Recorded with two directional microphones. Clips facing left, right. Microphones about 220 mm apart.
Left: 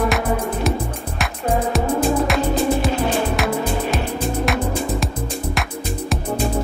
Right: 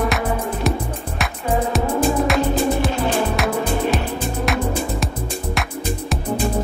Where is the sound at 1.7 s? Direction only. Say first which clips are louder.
Even; centre (ahead or behind).